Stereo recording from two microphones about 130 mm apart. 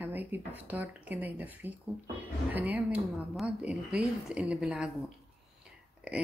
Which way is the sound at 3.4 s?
10° right (ahead or behind).